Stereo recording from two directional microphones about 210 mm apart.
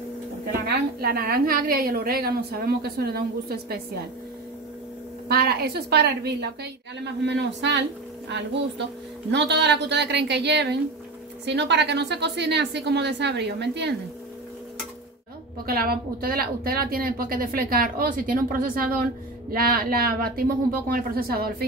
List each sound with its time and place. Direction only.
0.7 s a woman's voice: 45° right (ahead or behind)
5.3 s a woman's voice: 50° right (ahead or behind)
15.6 s a woman's voice: 45° right (ahead or behind)